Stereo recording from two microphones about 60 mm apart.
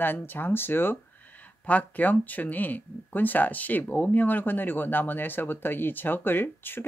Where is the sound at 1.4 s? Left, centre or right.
Left.